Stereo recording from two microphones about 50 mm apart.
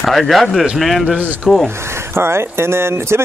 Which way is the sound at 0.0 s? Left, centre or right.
Centre.